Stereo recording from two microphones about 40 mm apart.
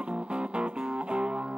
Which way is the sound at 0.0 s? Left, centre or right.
Right.